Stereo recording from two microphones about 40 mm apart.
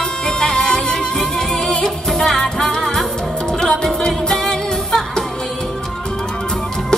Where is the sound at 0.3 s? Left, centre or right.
Centre.